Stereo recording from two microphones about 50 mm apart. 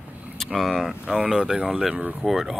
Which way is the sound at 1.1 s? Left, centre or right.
Centre.